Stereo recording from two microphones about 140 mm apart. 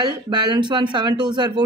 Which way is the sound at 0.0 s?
30° right (ahead or behind).